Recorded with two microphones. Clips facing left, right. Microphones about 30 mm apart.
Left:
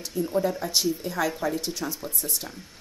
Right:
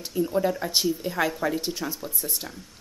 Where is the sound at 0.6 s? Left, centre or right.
Right; by 2.4 s centre.